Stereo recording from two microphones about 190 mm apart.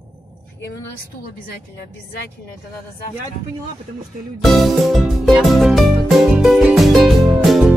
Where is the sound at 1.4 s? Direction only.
55° left (ahead or behind).